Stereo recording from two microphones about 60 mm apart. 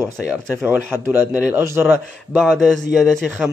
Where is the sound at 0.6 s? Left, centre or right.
Right.